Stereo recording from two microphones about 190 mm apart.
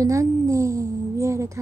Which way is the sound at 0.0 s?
15° right (ahead or behind).